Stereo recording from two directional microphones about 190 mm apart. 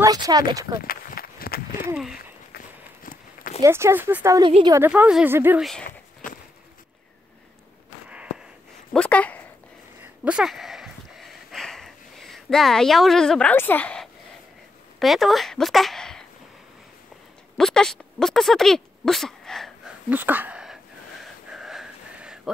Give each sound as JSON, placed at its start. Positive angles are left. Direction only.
{"t": 0.0, "sound": "speech", "side_deg": -20}
{"t": 0.7, "sound": "run", "side_deg": 50}
{"t": 2.1, "sound": "walk", "side_deg": 50}
{"t": 3.6, "sound": "speech", "side_deg": -15}
{"t": 4.4, "sound": "speech", "side_deg": -25}
{"t": 4.7, "sound": "speech", "side_deg": -10}
{"t": 5.6, "sound": "speech", "side_deg": 0}
{"t": 5.9, "sound": "a sound", "side_deg": 45}
{"t": 8.9, "sound": "speech", "side_deg": 5}
{"t": 10.2, "sound": "a sound", "side_deg": -5}
{"t": 15.0, "sound": "speech", "side_deg": 0}
{"t": 17.6, "sound": "speech", "side_deg": 0}
{"t": 20.1, "sound": "wheeze", "side_deg": -10}